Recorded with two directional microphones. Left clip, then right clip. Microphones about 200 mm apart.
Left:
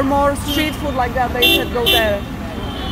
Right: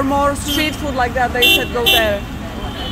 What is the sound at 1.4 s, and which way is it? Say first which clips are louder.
Speech: right 1 dB; 55° right (ahead or behind).